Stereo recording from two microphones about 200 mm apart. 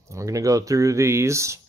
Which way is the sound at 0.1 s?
15° right (ahead or behind).